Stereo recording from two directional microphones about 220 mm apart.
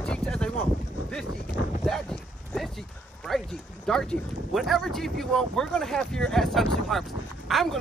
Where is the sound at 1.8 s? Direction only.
Centre (ahead or behind).